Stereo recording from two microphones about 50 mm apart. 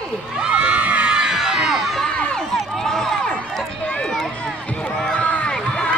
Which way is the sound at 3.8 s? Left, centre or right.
Left.